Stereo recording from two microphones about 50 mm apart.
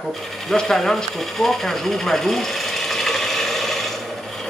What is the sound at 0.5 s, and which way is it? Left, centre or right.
Speech, centre.